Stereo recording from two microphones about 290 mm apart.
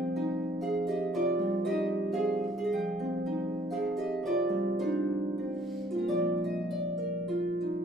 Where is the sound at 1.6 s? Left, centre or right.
Centre.